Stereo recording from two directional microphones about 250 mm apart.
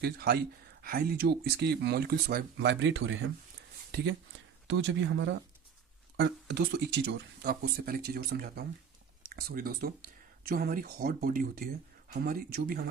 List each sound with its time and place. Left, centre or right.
0.0 s speech: right